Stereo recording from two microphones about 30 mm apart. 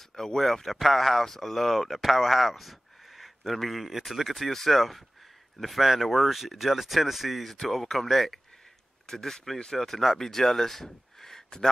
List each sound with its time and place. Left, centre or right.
0.1 s speech: centre
4.5 s speech: centre
4.7 s speech: centre
7.6 s speech: centre